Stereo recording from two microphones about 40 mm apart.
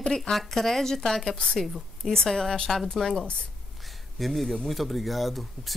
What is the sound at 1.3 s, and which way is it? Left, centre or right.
Speech, left.